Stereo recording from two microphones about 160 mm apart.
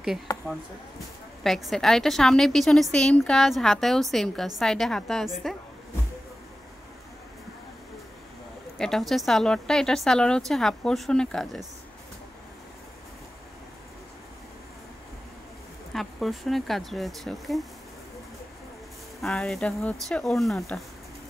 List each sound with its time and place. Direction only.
0.3 s a sound: 20° left (ahead or behind)
1.4 s a woman's voice: centre (ahead or behind)
8.7 s a woman's voice: centre (ahead or behind)
15.9 s a woman's voice: centre (ahead or behind)
19.2 s a woman's voice: 5° left (ahead or behind)